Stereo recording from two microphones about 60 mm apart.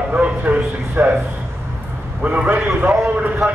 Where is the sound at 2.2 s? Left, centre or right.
Right.